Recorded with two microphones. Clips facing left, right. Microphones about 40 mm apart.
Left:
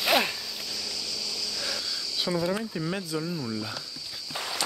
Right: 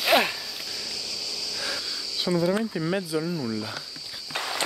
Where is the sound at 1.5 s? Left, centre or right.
Centre.